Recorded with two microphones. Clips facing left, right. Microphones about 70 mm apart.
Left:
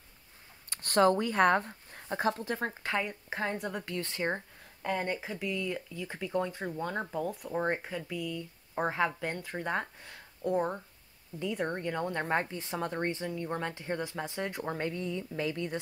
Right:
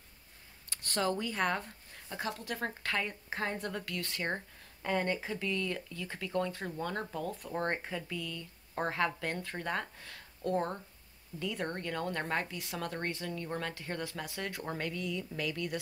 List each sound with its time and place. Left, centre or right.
0.7 s speech: left
2.8 s speech: centre
3.8 s speech: left